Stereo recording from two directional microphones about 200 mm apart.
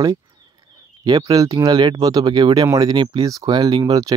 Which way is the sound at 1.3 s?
15° right (ahead or behind).